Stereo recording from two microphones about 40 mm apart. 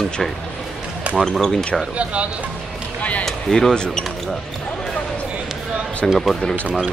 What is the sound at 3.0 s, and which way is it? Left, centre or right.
Speech, left.